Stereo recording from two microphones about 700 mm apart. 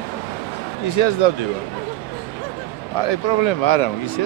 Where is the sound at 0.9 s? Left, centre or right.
Left.